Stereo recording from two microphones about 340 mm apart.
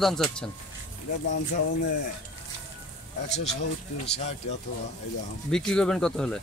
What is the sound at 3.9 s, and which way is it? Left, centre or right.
Speech, left.